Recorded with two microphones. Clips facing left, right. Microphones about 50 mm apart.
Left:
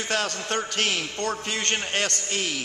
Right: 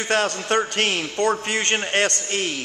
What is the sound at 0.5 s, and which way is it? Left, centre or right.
Speech, right.